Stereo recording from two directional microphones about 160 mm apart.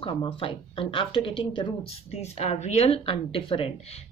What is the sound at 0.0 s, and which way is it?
Speech, 35° left (ahead or behind).